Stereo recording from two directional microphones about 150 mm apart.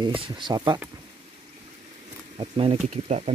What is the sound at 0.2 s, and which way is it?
Speech, 30° right (ahead or behind).